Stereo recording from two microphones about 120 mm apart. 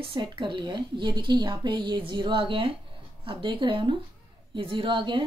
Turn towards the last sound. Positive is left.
turn(degrees=-45)  # may be behind; listen again after turning